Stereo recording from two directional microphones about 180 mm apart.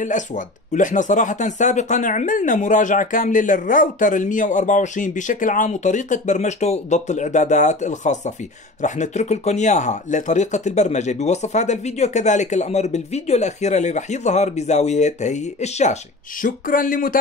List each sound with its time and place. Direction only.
0.0 s speech: 45° left (ahead or behind)